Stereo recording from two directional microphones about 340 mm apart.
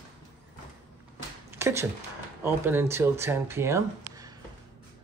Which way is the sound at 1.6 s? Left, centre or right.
Centre.